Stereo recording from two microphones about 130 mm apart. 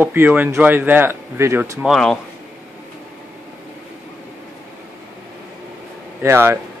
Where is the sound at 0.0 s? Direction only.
15° right (ahead or behind).